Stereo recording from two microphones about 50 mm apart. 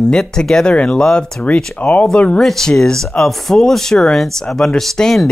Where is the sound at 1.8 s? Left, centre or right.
Left.